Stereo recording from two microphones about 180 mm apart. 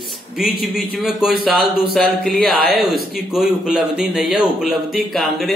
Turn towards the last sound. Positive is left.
turn(degrees=0)  # may be behind; listen again after turning